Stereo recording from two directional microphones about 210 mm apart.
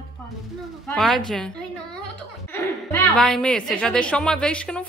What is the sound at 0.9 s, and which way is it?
Speech, centre (ahead or behind).